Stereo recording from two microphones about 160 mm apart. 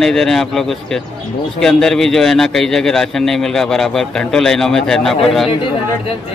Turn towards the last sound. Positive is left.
turn(degrees=0)  # may be behind; listen again after turning